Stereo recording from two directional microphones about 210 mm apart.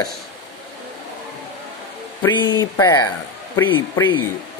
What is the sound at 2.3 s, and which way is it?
Synthetic singing, 20° left (ahead or behind).